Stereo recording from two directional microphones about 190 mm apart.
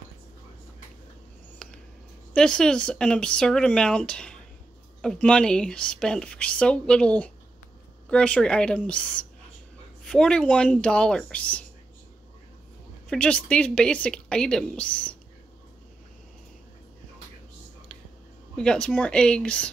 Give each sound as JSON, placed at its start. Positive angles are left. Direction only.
{"t": 1.6, "sound": "a sound", "side_deg": 5}
{"t": 2.3, "sound": "speech", "side_deg": 5}
{"t": 13.1, "sound": "speech", "side_deg": 5}
{"t": 18.6, "sound": "speech", "side_deg": 5}